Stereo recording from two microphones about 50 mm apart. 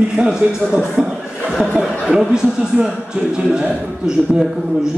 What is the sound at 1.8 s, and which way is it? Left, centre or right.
Speech, centre.